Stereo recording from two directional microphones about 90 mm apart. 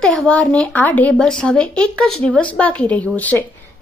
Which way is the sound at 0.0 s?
10° left (ahead or behind).